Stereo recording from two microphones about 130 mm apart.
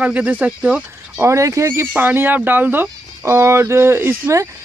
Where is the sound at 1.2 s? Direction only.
25° right (ahead or behind).